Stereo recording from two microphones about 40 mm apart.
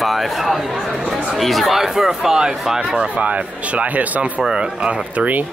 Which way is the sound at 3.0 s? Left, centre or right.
Right.